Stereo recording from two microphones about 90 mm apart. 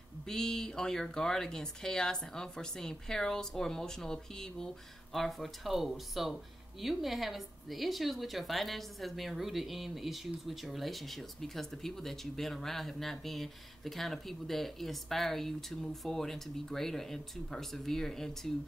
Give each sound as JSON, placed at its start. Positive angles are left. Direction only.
{"t": 0.3, "sound": "speech", "side_deg": 5}